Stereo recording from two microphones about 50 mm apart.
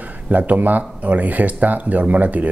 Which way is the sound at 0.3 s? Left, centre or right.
Right.